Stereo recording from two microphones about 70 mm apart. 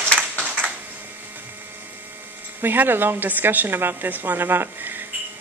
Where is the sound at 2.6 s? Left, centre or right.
Right.